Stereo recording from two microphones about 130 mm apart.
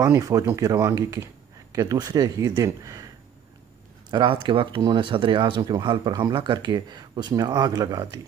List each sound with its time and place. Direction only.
0.0 s speech: 25° right (ahead or behind)
4.1 s speech: 35° right (ahead or behind)